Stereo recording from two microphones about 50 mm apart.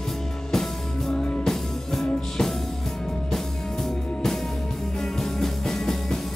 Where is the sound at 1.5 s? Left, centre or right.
Centre.